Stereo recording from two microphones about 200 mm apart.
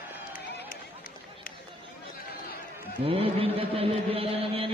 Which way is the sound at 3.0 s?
30° right (ahead or behind).